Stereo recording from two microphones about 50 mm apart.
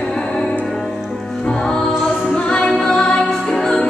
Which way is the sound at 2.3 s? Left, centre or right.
Centre.